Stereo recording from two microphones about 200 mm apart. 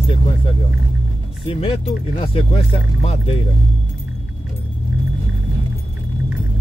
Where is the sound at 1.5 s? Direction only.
30° left (ahead or behind).